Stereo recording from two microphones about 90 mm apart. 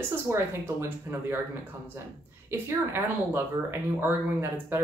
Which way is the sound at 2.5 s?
30° right (ahead or behind).